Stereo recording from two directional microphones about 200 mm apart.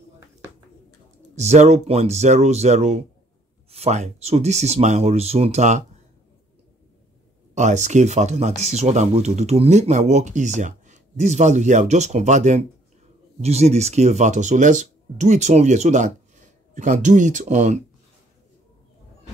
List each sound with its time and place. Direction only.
1.3 s speech: 35° right (ahead or behind)
7.5 s speech: 35° right (ahead or behind)